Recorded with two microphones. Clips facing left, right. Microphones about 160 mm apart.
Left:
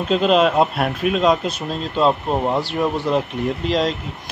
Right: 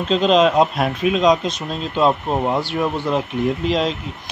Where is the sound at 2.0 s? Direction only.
5° right (ahead or behind).